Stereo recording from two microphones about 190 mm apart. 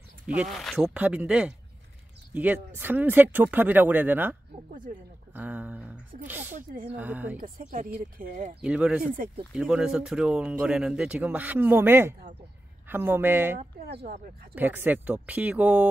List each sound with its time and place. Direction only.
0.3 s speech: 5° right (ahead or behind)
6.5 s speech: 40° right (ahead or behind)
7.0 s speech: 10° right (ahead or behind)
7.3 s speech: 45° right (ahead or behind)
8.5 s speech: 5° right (ahead or behind)